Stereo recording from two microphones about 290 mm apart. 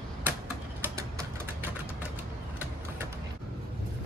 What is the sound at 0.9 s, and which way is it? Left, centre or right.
Typewriter, centre.